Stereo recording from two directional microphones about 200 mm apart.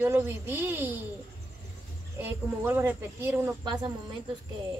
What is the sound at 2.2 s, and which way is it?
A woman's voice, 10° right (ahead or behind).